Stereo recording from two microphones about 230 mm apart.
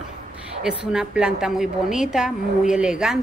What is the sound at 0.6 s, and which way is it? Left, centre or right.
A woman's voice, centre.